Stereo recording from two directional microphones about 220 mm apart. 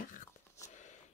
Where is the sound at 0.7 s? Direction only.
35° left (ahead or behind).